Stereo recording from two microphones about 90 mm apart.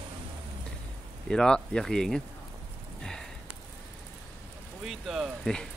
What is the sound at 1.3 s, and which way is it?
Speech, 10° left (ahead or behind).